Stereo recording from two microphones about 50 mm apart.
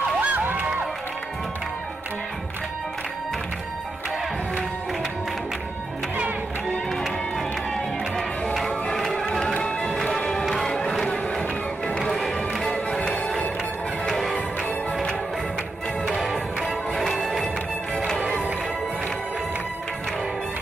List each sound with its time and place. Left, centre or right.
0.2 s crowd: right
6.9 s music: centre
8.6 s music: centre
9.9 s music: centre
12.1 s music: centre
13.0 s music: left
14.0 s music: centre
16.6 s music: centre